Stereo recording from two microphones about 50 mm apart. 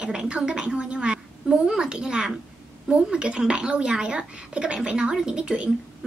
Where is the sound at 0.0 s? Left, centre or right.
Centre.